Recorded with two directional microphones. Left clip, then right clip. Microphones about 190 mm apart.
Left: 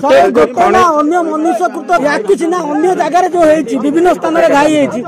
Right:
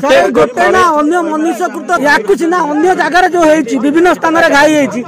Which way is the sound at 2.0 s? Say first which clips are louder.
Right 2 dB; 15° right (ahead or behind).